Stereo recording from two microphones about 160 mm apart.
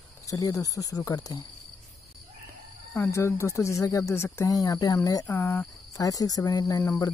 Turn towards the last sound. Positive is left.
turn(degrees=20)  # may be behind; listen again after turning